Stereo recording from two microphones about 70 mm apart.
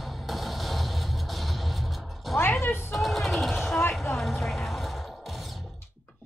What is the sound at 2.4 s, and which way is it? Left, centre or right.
Music, left.